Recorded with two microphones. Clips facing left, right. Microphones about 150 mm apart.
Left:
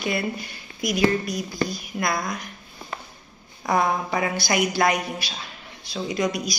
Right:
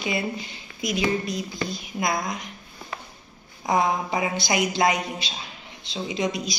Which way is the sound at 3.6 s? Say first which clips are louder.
Even; 20° right (ahead or behind).